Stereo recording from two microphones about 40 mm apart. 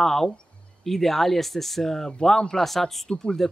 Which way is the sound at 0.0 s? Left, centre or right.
Centre.